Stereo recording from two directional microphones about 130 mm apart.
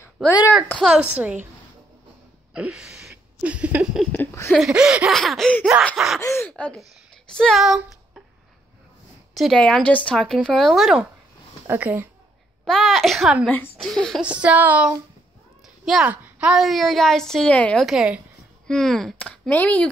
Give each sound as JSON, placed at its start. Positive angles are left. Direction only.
{"t": 0.8, "sound": "a woman's voice", "side_deg": -5}
{"t": 2.5, "sound": "a sound", "side_deg": -5}
{"t": 4.1, "sound": "speech", "side_deg": 15}
{"t": 4.5, "sound": "speech", "side_deg": -5}
{"t": 6.2, "sound": "speech", "side_deg": 20}
{"t": 6.5, "sound": "speech", "side_deg": 5}
{"t": 9.3, "sound": "speech", "side_deg": 0}
{"t": 11.6, "sound": "a woman's voice", "side_deg": -15}
{"t": 12.6, "sound": "speech", "side_deg": 0}
{"t": 13.5, "sound": "speech", "side_deg": 15}
{"t": 14.2, "sound": "a woman's voice", "side_deg": -10}
{"t": 17.8, "sound": "a woman's voice", "side_deg": -5}
{"t": 18.7, "sound": "speech", "side_deg": 5}